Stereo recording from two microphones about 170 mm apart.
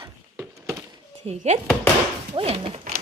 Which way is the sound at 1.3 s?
40° right (ahead or behind).